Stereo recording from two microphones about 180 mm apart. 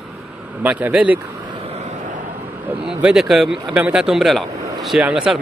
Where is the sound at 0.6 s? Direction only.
10° right (ahead or behind).